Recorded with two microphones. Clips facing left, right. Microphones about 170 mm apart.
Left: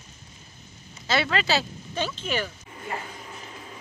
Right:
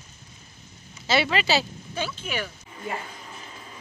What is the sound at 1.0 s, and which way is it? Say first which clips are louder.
Speech: right 1 dB; 5° right (ahead or behind).